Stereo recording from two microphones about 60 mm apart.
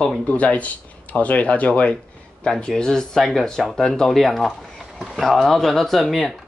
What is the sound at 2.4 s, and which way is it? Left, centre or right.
Speech, centre.